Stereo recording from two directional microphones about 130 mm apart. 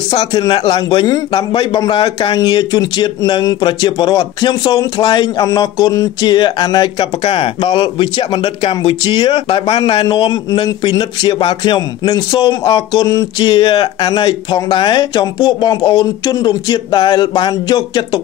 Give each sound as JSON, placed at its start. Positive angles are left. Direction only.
{"t": 0.2, "sound": "speech", "side_deg": 30}